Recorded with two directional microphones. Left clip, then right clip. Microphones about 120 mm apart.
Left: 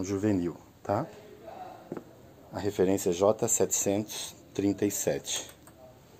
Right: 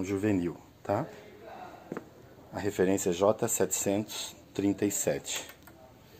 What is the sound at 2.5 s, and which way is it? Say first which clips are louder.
Speech: left 1 dB; 10° left (ahead or behind).